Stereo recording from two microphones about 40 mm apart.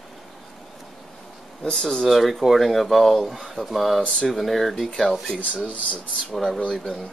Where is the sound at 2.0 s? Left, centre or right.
Centre.